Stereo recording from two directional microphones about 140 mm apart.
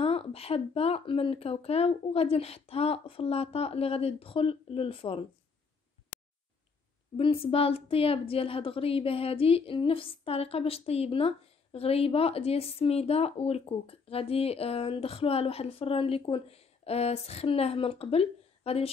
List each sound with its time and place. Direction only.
0.0 s a woman's voice: 45° left (ahead or behind)
7.2 s a woman's voice: 40° left (ahead or behind)